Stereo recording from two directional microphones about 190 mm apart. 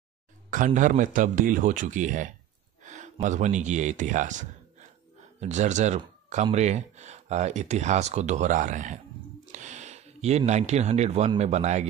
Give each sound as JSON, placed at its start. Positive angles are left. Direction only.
{"t": 0.5, "sound": "speech", "side_deg": -45}